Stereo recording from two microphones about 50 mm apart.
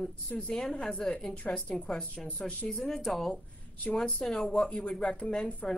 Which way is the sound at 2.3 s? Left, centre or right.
Left.